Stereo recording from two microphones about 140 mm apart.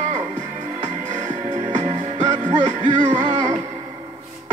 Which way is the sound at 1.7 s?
60° right (ahead or behind).